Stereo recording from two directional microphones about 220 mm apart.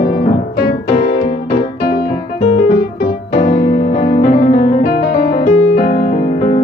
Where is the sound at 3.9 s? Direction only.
45° left (ahead or behind).